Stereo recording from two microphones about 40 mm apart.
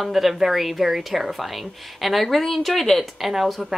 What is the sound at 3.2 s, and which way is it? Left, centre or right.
Speech, centre.